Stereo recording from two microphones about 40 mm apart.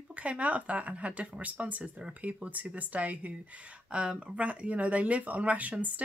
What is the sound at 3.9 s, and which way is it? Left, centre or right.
Speech, right.